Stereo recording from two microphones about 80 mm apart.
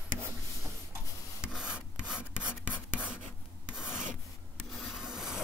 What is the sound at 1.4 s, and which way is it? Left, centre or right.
Rub, centre.